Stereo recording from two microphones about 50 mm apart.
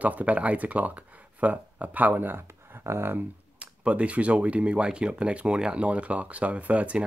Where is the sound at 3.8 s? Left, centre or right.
Right.